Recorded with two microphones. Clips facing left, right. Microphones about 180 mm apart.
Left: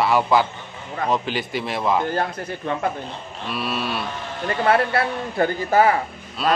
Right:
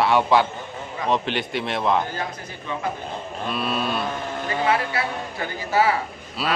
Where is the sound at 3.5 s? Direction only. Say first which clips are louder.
Right 1 dB; 5° left (ahead or behind).